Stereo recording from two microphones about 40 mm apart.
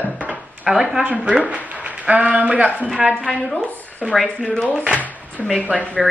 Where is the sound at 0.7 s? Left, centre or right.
Centre.